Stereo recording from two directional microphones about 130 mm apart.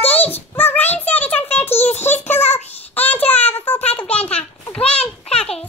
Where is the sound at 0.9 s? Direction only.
15° left (ahead or behind).